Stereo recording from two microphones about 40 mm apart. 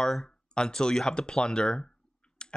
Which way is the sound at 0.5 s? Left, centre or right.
Left.